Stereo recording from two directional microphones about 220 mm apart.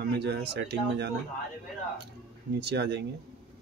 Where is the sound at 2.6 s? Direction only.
50° right (ahead or behind).